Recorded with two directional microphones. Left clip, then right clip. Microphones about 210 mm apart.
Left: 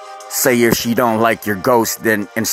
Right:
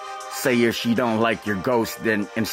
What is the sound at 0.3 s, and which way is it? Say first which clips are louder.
Speech: left 7 dB; 25° left (ahead or behind).